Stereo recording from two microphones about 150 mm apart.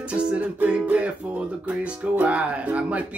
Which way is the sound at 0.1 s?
10° right (ahead or behind).